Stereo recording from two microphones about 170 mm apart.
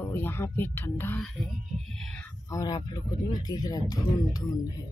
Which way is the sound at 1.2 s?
Centre (ahead or behind).